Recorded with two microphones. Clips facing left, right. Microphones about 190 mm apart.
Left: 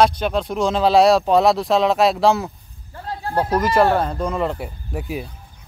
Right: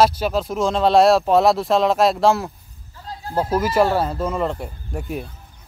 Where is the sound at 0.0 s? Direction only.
5° right (ahead or behind).